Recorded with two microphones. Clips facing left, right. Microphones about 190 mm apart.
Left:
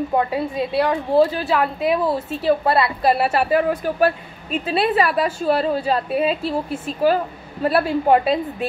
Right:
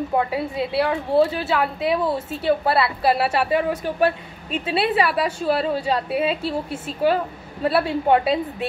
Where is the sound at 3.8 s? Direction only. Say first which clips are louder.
Left 2 dB; 25° right (ahead or behind).